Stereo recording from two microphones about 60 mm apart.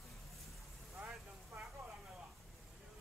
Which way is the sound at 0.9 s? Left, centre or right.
Right.